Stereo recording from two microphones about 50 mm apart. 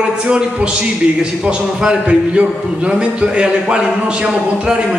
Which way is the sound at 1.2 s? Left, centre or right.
Centre.